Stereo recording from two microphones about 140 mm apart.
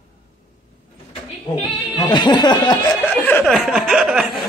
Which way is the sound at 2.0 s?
30° left (ahead or behind).